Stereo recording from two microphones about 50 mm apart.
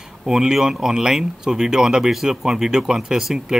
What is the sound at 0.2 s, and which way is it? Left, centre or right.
Speech, centre.